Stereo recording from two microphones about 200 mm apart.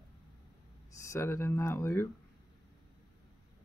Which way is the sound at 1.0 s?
15° left (ahead or behind).